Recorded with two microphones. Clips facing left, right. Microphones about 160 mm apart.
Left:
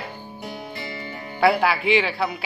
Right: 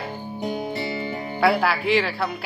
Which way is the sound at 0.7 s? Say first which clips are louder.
Right 6 dB; 25° right (ahead or behind).